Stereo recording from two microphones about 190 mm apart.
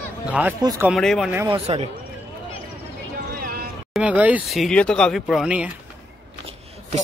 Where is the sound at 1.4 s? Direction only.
30° right (ahead or behind).